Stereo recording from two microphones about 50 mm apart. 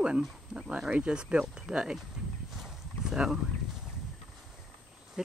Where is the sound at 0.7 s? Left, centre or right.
Centre.